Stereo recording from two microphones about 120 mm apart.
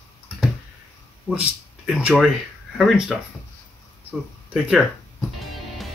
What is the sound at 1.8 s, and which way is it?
Speech, 5° right (ahead or behind).